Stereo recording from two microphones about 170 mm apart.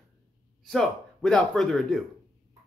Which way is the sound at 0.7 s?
5° left (ahead or behind).